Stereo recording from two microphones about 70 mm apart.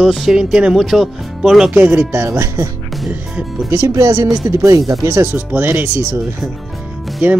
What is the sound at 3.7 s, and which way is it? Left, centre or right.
Speech, right.